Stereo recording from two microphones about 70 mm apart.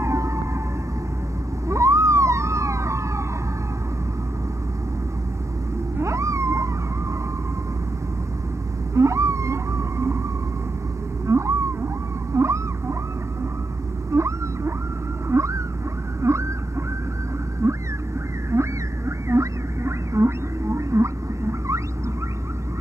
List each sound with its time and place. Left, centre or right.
0.0 s emergency vehicle: right
1.7 s police car: right
5.9 s wild animals: right
8.9 s whale vocalization: right
11.2 s a sound: right
14.1 s whale vocalization: right
15.2 s a sound: right
17.6 s a sound: right
18.5 s rodents: right